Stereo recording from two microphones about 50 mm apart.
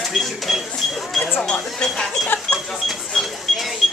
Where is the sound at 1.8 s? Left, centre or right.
Centre.